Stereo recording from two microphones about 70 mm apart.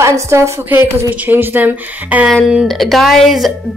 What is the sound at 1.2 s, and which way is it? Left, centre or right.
Speech, right.